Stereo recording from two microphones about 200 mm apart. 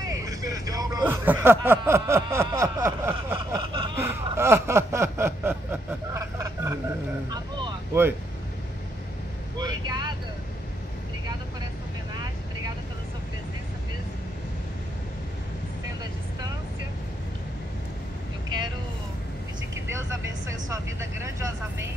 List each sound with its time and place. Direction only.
0.0 s hubbub: 15° right (ahead or behind)
3.3 s a sound: 20° right (ahead or behind)
7.2 s vehicle: 20° right (ahead or behind)
9.6 s vehicle: 20° right (ahead or behind)
20.7 s vehicle: 15° right (ahead or behind)